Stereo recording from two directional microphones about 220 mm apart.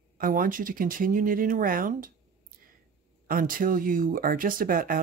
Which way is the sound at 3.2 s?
40° right (ahead or behind).